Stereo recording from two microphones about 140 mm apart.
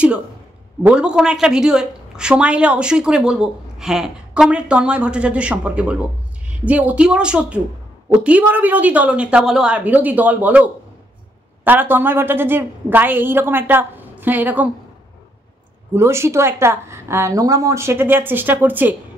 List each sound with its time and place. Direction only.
0.8 s a woman's voice: 5° right (ahead or behind)
15.9 s a woman's voice: 20° right (ahead or behind)